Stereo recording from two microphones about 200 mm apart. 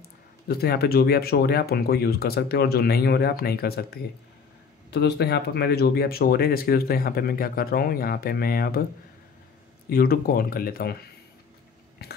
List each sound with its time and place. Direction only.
0.5 s speech: 50° left (ahead or behind)
9.8 s speech: 50° left (ahead or behind)
12.0 s biting: 50° left (ahead or behind)